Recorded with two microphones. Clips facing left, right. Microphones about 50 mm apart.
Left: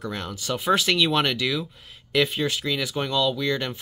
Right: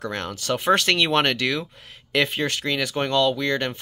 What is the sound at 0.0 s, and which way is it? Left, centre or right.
Speech, right.